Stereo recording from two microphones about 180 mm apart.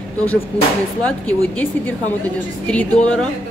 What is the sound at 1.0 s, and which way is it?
Speech, 10° left (ahead or behind).